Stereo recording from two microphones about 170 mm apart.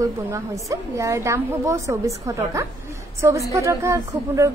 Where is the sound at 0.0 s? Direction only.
20° right (ahead or behind).